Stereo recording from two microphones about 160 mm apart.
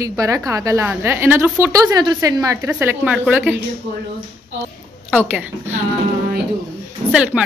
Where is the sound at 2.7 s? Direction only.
10° right (ahead or behind).